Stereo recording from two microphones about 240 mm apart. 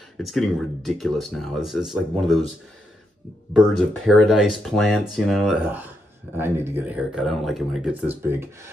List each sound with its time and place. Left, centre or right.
0.2 s speech: centre
3.5 s speech: centre